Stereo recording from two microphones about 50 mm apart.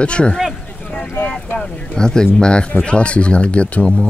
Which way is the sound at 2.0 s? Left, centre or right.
Centre.